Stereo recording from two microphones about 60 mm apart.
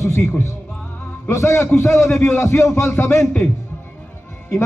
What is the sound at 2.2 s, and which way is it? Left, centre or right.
Music, left.